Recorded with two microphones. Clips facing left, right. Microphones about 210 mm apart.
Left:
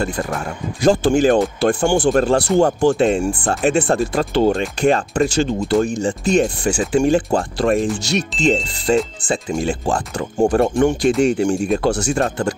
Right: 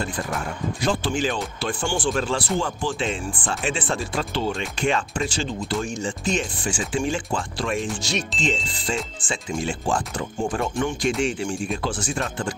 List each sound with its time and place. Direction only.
0.8 s speech: 45° left (ahead or behind)
2.3 s speech: 65° left (ahead or behind)
3.0 s speech: 45° left (ahead or behind)
3.7 s speech: 60° left (ahead or behind)
4.1 s speech: 45° left (ahead or behind)
6.4 s speech: 65° left (ahead or behind)
7.0 s speech: 45° left (ahead or behind)
8.1 s speech: 65° left (ahead or behind)
8.7 s speech: 40° left (ahead or behind)
10.5 s speech: 60° left (ahead or behind)
11.2 s speech: 45° left (ahead or behind)
11.9 s speech: 70° left (ahead or behind)